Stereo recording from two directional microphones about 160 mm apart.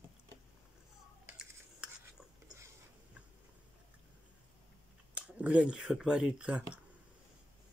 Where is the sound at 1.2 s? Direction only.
5° right (ahead or behind).